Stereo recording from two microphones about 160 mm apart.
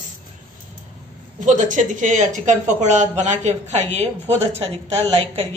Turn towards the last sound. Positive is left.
turn(degrees=-40)  # may be behind; listen again after turning